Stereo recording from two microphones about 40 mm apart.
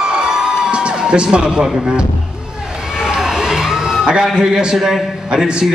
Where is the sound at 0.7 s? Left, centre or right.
Right.